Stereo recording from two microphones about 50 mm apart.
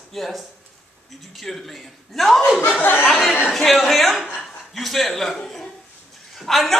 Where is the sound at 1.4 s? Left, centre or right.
Centre.